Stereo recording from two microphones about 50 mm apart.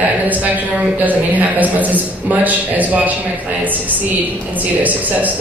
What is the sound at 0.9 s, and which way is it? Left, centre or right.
A man's voice, right.